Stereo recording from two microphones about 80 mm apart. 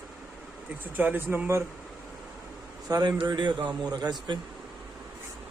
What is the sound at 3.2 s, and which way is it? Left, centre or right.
Speech, right.